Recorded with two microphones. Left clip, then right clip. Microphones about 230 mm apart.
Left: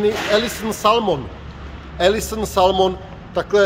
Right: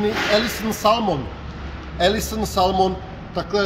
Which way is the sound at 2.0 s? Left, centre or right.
Centre.